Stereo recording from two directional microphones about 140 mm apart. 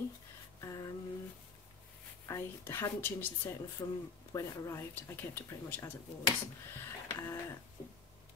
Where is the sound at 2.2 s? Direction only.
20° left (ahead or behind).